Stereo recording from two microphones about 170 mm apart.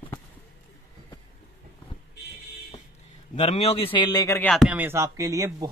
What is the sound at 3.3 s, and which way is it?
A man's voice, 40° left (ahead or behind).